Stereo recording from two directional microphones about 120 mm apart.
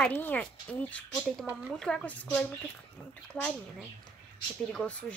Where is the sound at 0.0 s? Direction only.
15° left (ahead or behind).